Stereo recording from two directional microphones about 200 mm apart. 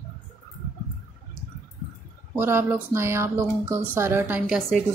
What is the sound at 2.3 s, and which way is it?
Speech, 10° right (ahead or behind).